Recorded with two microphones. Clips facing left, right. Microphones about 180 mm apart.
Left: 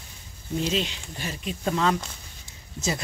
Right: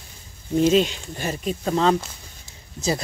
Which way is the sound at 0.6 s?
50° right (ahead or behind).